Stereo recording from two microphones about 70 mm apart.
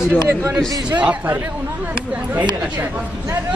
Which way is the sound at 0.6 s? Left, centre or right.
Right.